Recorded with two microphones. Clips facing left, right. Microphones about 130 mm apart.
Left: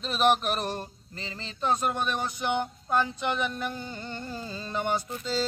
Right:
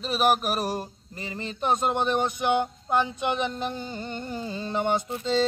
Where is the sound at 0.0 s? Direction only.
5° right (ahead or behind).